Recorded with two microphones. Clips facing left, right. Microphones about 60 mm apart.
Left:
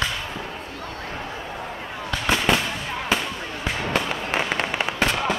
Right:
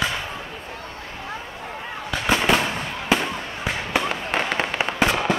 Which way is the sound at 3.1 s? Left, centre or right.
Centre.